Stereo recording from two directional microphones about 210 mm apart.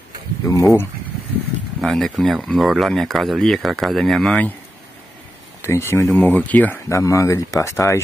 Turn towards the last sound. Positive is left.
turn(degrees=15)  # may be behind; listen again after turning